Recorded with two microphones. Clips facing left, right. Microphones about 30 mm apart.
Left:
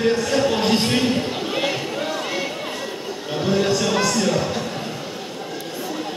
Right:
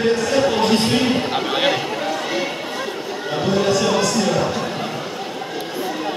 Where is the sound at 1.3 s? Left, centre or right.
Right.